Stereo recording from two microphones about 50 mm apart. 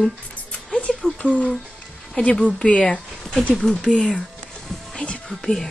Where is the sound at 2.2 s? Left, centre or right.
Centre.